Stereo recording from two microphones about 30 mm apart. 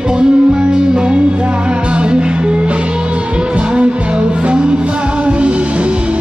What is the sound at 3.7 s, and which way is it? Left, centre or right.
Music, right.